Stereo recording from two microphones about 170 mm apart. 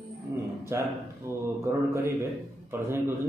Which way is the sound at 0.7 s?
15° right (ahead or behind).